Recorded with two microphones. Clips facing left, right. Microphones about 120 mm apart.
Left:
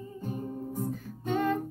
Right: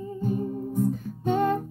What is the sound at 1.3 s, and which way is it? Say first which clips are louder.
Music: right 4 dB; 25° right (ahead or behind).